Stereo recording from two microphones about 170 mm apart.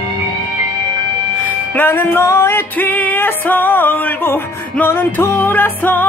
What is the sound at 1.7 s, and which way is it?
Music, 10° left (ahead or behind).